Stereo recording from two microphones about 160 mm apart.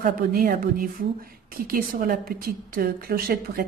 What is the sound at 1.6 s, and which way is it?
A woman's voice, 65° right (ahead or behind).